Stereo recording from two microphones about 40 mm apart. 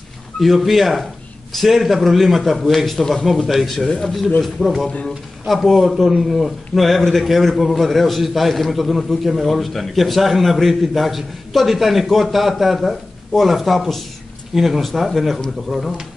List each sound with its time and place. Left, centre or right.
0.4 s a man's voice: centre
3.0 s a man's voice: centre
3.4 s a man's voice: centre